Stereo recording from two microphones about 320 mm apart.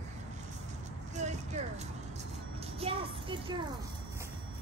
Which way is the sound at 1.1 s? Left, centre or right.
Right.